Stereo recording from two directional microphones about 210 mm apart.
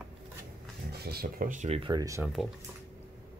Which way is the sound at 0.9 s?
50° right (ahead or behind).